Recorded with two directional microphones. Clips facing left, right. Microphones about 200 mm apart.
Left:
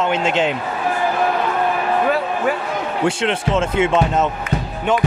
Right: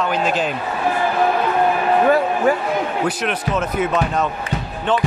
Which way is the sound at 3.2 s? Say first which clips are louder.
Left 3 dB; 25° left (ahead or behind).